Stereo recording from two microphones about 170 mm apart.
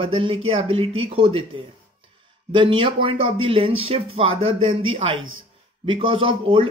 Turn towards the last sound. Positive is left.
turn(degrees=-30)  # may be behind; listen again after turning